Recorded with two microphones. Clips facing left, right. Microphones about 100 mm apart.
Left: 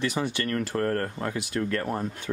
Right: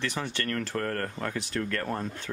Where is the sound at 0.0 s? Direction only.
10° left (ahead or behind).